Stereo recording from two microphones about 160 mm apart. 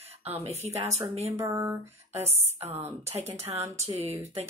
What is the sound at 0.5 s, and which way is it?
Speech, 40° right (ahead or behind).